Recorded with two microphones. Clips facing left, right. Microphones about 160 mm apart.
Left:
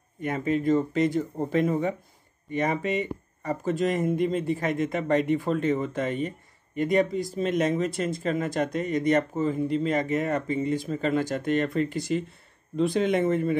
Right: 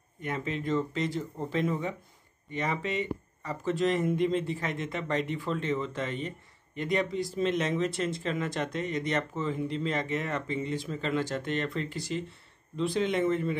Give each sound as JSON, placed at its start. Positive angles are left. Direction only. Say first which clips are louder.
{"t": 0.2, "sound": "speech", "louder": "left 7 dB", "side_deg": 45}